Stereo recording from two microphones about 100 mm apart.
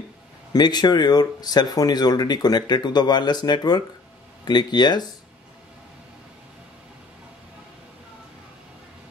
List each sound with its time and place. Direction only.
0.5 s speech: 45° left (ahead or behind)